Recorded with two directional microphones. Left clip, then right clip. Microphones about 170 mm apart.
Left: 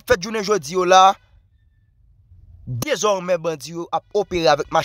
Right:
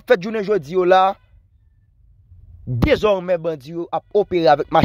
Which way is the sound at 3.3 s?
5° left (ahead or behind).